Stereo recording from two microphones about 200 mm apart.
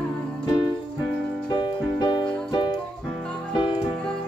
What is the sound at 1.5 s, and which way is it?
Music, 20° left (ahead or behind).